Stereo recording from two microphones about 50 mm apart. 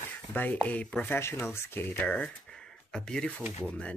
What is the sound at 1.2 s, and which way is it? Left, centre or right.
Speech, left.